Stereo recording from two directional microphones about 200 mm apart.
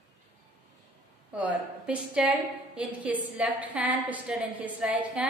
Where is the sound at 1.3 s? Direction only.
5° right (ahead or behind).